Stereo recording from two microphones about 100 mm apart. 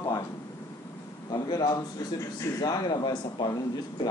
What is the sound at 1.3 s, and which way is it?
A man's voice, 40° left (ahead or behind).